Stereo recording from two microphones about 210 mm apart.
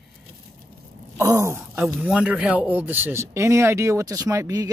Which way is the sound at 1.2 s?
15° right (ahead or behind).